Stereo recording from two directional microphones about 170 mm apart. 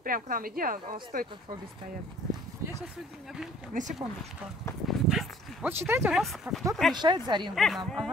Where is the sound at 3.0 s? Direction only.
Centre (ahead or behind).